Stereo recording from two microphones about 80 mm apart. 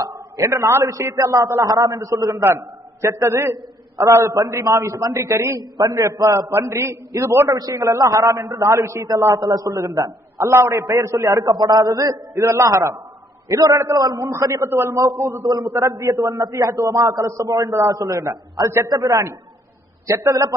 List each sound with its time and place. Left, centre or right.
0.0 s a sound: right
0.5 s a man's voice: right
1.1 s a man's voice: right
2.4 s a man's voice: right
5.6 s a man's voice: right
5.9 s a man's voice: right
11.5 s a man's voice: right
15.4 s a man's voice: right
15.7 s a man's voice: right